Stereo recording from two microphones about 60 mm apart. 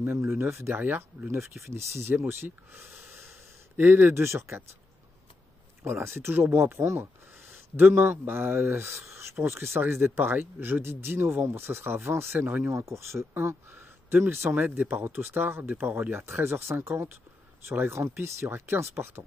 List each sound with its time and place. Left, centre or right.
0.0 s speech: right
2.9 s wheeze: centre
3.7 s speech: right
5.9 s speech: right
12.7 s speech: right